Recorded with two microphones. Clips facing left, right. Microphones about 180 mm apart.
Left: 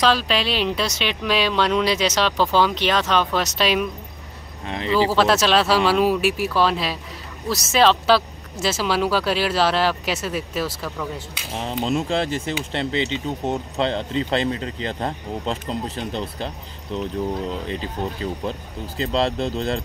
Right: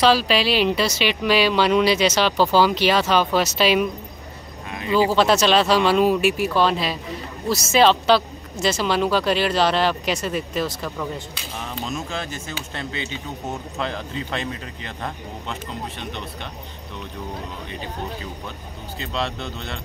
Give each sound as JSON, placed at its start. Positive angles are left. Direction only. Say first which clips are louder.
{"t": 0.0, "sound": "speech", "louder": "right 2 dB", "side_deg": -5}
{"t": 4.6, "sound": "a sound", "louder": "left 3 dB", "side_deg": 25}
{"t": 5.1, "sound": "speech", "louder": "right 1 dB", "side_deg": 0}
{"t": 11.5, "sound": "speech", "louder": "left 7 dB", "side_deg": 30}
{"t": 18.4, "sound": "speech", "louder": "left 7 dB", "side_deg": 35}